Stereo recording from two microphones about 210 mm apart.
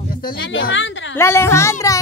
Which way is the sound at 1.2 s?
10° left (ahead or behind).